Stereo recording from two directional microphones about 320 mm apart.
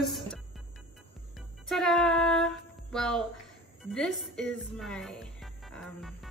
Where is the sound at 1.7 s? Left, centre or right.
Centre.